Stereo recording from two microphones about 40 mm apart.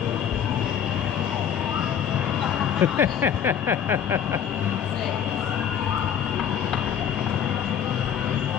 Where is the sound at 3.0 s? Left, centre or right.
Right.